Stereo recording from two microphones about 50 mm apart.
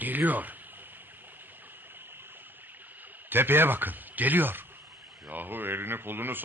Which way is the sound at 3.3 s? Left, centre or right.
Right.